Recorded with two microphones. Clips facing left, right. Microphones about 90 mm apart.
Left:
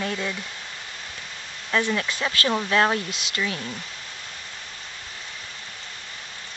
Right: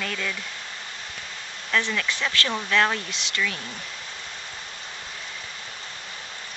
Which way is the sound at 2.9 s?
35° left (ahead or behind).